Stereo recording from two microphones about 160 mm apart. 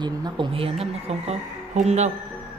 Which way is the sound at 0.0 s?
30° right (ahead or behind).